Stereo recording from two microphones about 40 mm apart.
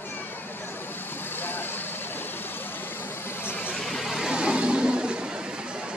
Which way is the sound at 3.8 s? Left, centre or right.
Centre.